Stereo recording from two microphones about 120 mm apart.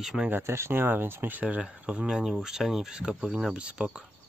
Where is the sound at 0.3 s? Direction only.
20° right (ahead or behind).